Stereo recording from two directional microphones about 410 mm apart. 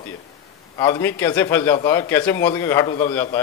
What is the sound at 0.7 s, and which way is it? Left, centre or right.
A man's voice, centre.